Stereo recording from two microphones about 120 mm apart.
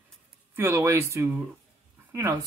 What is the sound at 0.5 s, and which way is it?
Speech, 20° right (ahead or behind).